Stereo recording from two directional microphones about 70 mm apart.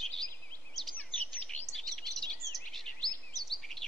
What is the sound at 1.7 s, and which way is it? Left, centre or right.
Bird vocalization, centre.